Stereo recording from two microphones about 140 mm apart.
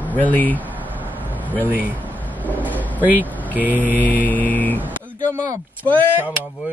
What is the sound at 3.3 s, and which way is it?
Vehicle, 10° left (ahead or behind).